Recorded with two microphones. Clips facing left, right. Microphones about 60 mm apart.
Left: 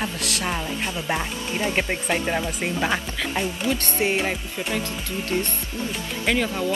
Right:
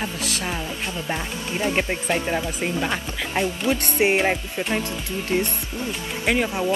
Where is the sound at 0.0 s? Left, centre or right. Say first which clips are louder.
Left 1 dB; centre.